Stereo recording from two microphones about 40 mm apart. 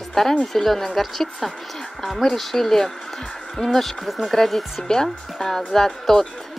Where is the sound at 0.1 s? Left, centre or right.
Centre.